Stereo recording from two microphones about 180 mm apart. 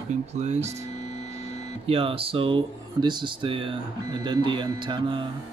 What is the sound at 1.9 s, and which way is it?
Speech, 30° right (ahead or behind).